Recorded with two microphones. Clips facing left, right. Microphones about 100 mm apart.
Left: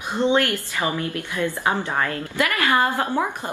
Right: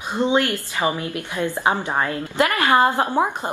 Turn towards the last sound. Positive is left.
turn(degrees=-20)  # may be behind; listen again after turning